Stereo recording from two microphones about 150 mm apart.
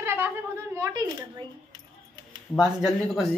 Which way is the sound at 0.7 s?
20° right (ahead or behind).